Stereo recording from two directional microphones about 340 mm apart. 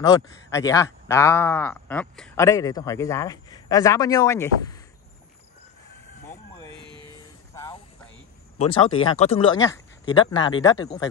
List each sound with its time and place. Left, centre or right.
0.0 s speech: centre
6.2 s chicken: centre
6.7 s music: centre
7.5 s a sound: centre
8.5 s speech: centre